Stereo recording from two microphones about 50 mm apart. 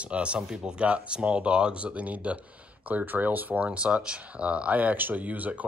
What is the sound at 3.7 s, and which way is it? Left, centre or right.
Speech, right.